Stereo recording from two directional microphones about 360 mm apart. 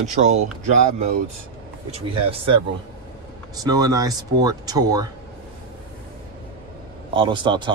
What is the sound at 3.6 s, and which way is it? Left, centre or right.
Speech, centre.